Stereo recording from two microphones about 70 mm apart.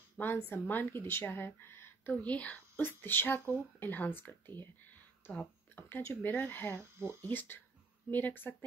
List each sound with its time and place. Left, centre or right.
0.5 s a woman's voice: left
2.2 s a woman's voice: left
6.8 s speech: right
7.2 s speech: left